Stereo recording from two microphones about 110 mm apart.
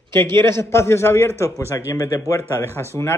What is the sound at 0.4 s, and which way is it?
Speech, 25° left (ahead or behind).